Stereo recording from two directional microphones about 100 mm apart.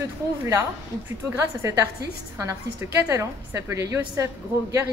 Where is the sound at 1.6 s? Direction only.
30° right (ahead or behind).